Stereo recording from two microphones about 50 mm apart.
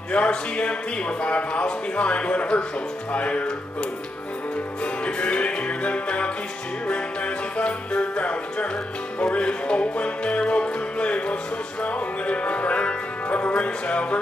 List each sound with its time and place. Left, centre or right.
0.1 s a man's voice: left
5.0 s music: left